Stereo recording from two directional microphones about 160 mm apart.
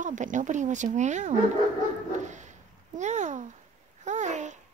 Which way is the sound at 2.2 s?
50° right (ahead or behind).